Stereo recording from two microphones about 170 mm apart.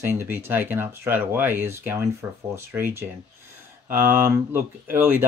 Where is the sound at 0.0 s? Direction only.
10° right (ahead or behind).